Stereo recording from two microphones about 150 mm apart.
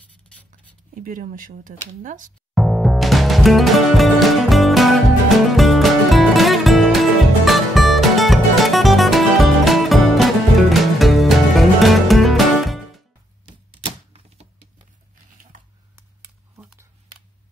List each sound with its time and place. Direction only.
0.5 s speech: 65° right (ahead or behind)
2.5 s music: centre (ahead or behind)
14.1 s typewriter: 45° right (ahead or behind)
15.5 s a sound: 60° right (ahead or behind)